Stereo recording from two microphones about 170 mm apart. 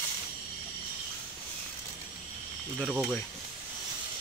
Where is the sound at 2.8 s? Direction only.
5° right (ahead or behind).